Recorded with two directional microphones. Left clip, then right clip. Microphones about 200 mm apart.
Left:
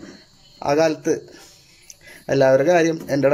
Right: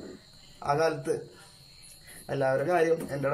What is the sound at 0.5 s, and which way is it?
Speech, 40° left (ahead or behind).